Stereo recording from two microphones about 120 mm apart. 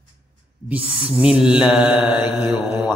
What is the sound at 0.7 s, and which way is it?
Mantra, 10° right (ahead or behind).